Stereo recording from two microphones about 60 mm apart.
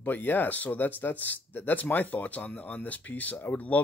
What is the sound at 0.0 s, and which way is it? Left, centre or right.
Speech, left.